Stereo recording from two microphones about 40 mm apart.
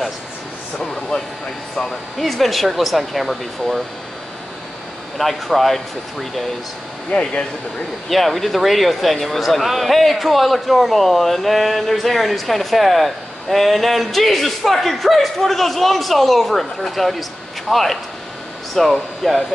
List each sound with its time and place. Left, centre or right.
2.1 s speech: centre
5.3 s speech: centre
7.1 s speech: left
8.1 s speech: centre